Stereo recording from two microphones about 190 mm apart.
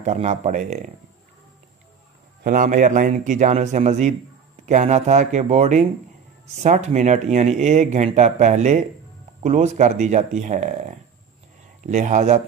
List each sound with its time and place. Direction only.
0.0 s speech: 35° right (ahead or behind)
2.4 s speech: 45° right (ahead or behind)